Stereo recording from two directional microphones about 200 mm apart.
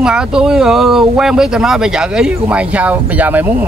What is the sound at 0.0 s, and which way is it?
Speech, 5° right (ahead or behind).